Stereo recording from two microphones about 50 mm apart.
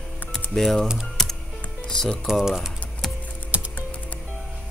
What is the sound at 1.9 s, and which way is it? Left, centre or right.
Speech, centre.